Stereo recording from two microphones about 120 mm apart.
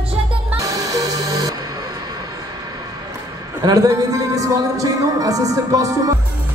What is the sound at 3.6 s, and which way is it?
Speech, 30° right (ahead or behind).